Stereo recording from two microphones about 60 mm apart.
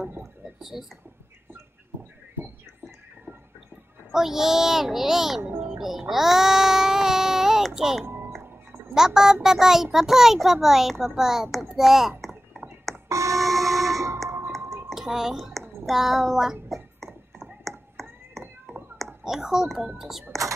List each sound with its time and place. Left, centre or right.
0.6 s speech: centre
4.1 s a child's voice: centre
5.8 s child singing: centre
8.0 s music: right
8.9 s a child's voice: centre
12.2 s a sound: centre
13.1 s a sound: right
13.4 s train: centre
13.8 s fire alarm: right
14.6 s music: right
14.9 s music: centre
15.8 s speech: centre
16.6 s a sound: centre
19.2 s a child's voice: centre